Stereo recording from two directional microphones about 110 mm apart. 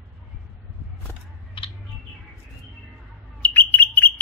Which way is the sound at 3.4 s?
15° left (ahead or behind).